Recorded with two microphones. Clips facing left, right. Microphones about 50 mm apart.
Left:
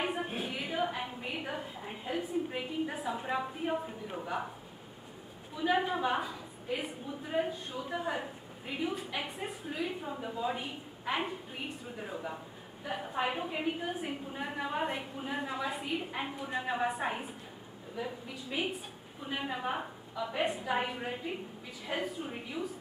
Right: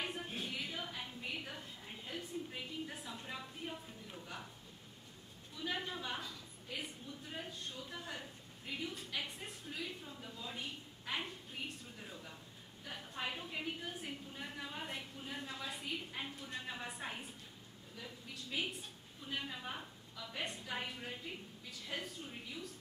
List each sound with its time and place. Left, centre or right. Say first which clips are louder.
0.0 s a sound: left 8 dB; left
3.1 s a woman's voice: left 13 dB; left
5.6 s a woman's voice: left 12 dB; left
18.3 s a woman's voice: left 4 dB; centre